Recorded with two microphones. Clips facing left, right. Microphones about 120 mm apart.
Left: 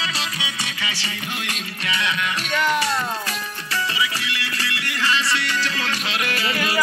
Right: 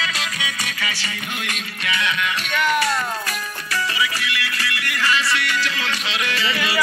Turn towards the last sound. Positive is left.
turn(degrees=45)  # may be behind; listen again after turning